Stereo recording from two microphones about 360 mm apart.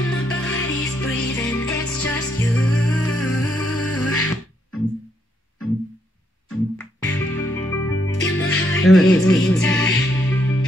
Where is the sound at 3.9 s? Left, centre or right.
Left.